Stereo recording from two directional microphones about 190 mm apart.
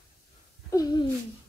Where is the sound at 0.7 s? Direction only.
20° left (ahead or behind).